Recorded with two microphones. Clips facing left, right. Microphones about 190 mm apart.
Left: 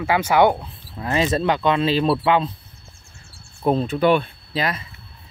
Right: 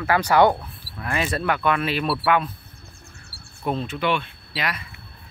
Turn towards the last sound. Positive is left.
turn(degrees=30)  # may be behind; listen again after turning